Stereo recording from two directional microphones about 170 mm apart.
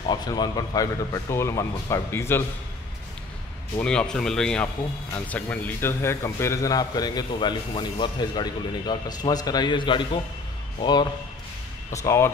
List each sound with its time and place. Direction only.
0.1 s a man's voice: 25° left (ahead or behind)
3.8 s a man's voice: 5° left (ahead or behind)